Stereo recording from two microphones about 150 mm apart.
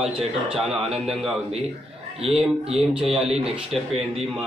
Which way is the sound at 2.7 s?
5° right (ahead or behind).